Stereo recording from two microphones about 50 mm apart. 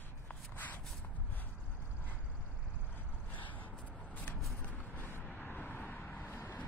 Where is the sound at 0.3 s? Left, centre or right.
Left.